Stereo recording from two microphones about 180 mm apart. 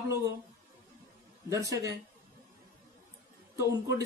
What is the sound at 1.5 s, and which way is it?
Speech, 15° right (ahead or behind).